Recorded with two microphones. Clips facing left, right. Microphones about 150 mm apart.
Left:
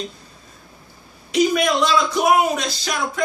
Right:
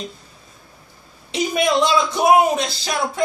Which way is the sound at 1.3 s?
25° right (ahead or behind).